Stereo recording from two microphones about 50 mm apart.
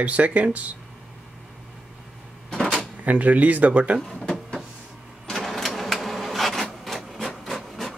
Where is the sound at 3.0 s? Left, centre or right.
Right.